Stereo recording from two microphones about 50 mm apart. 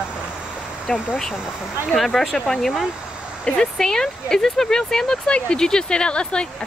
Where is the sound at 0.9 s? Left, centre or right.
Centre.